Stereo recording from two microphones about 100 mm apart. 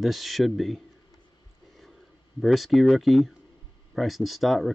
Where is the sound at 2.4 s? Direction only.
Centre (ahead or behind).